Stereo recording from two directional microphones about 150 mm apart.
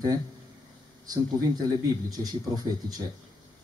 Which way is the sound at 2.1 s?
25° right (ahead or behind).